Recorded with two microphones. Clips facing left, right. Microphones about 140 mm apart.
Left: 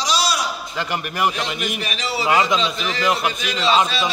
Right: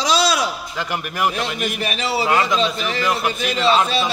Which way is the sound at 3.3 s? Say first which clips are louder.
Right 4 dB; 50° right (ahead or behind).